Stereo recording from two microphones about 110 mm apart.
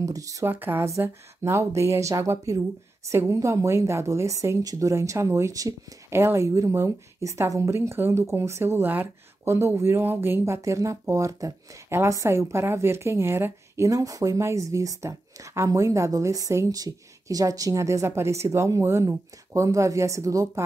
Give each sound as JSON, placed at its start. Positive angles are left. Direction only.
{"t": 0.0, "sound": "speech", "side_deg": -30}
{"t": 0.5, "sound": "speech", "side_deg": -20}